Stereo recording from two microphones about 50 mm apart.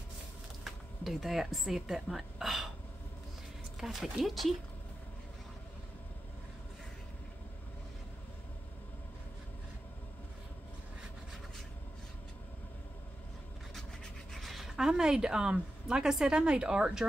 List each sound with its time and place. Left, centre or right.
0.7 s speech: centre
3.8 s speech: centre
14.3 s a sound: centre
15.5 s speech: centre